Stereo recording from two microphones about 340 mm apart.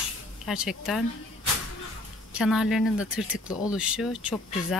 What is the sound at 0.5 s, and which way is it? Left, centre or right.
Speech, centre.